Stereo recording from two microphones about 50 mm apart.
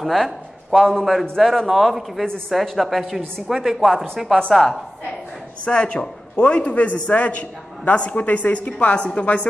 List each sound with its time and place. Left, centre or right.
0.0 s speech: centre
5.7 s a man's voice: left